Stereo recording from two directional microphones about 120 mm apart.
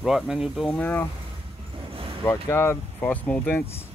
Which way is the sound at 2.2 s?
20° left (ahead or behind).